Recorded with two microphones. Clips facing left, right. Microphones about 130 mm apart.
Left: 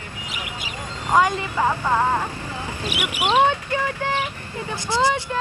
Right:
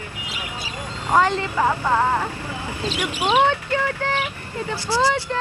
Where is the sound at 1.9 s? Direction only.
15° left (ahead or behind).